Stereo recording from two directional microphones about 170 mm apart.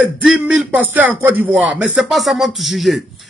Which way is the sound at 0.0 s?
5° right (ahead or behind).